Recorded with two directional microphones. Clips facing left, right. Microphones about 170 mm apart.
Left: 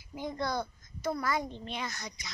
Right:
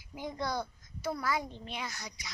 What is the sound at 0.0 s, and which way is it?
A child's voice, 10° right (ahead or behind).